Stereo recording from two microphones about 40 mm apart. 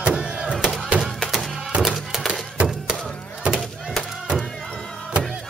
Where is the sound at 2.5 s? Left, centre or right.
Right.